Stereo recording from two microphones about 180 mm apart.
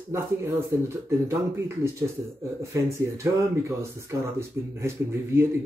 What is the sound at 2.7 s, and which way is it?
Speech, 15° right (ahead or behind).